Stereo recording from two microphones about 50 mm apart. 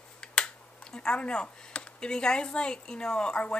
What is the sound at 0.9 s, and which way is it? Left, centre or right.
A woman's voice, left.